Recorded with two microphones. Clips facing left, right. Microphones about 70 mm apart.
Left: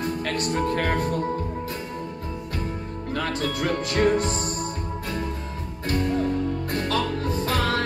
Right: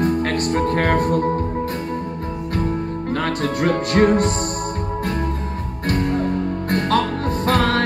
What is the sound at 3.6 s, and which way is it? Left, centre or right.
Music, right.